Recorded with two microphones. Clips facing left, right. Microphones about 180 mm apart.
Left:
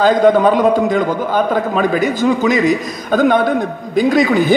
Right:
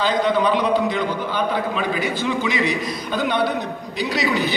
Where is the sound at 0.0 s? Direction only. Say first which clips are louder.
Left 8 dB; 45° left (ahead or behind).